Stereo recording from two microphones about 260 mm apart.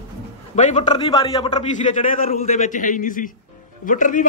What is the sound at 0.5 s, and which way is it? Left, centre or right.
Speech, left.